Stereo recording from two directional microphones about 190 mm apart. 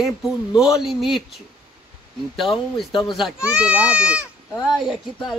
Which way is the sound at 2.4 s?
Centre (ahead or behind).